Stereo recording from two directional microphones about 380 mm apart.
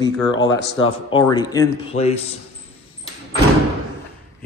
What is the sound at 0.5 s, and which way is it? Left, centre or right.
Speech, left.